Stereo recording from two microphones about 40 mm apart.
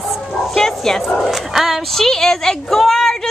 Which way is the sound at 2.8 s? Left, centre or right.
Centre.